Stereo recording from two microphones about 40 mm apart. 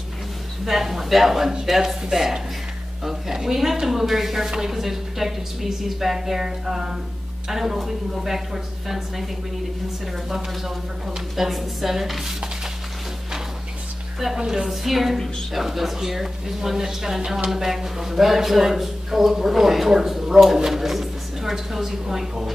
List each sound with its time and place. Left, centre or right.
0.7 s a man's voice: centre
11.1 s speech: centre
14.3 s a man's voice: centre